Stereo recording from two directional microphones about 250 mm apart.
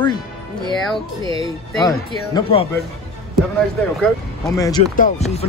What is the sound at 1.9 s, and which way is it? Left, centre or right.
Speech, centre.